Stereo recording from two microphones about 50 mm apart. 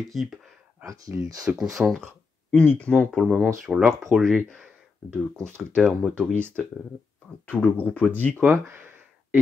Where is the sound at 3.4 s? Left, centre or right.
Centre.